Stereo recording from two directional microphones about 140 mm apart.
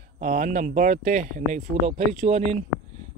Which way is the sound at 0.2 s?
75° right (ahead or behind).